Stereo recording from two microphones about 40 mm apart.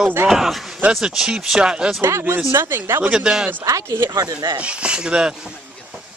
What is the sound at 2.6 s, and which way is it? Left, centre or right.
Speech, right.